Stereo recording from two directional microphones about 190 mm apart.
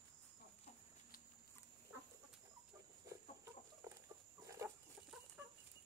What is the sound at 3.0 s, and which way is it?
Chicken, 15° right (ahead or behind).